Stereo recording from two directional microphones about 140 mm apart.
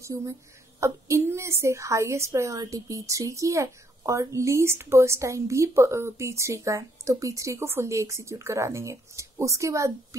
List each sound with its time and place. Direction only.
0.0 s a woman's voice: 20° right (ahead or behind)